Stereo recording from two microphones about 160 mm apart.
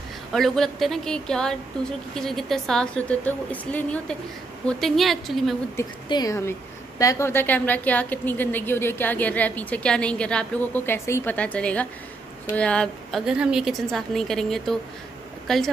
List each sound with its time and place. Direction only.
0.3 s a woman's voice: centre (ahead or behind)
6.0 s a woman's voice: 25° left (ahead or behind); by 15.7 s centre (ahead or behind)